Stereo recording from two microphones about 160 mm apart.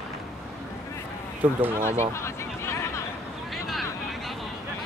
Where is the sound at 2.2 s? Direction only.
15° left (ahead or behind).